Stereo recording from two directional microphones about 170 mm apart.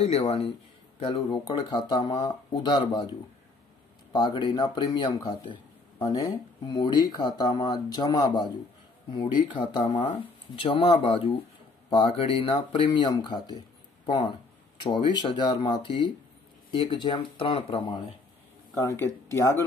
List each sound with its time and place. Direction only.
0.0 s speech: 35° left (ahead or behind)
4.1 s speech: 25° left (ahead or behind)